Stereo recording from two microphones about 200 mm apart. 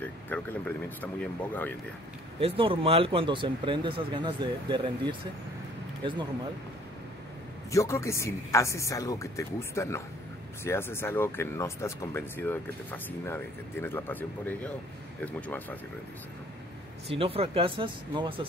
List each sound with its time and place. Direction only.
0.0 s speech: 10° left (ahead or behind)
2.4 s speech: 25° right (ahead or behind)
7.7 s speech: 15° left (ahead or behind)
17.1 s speech: 30° right (ahead or behind)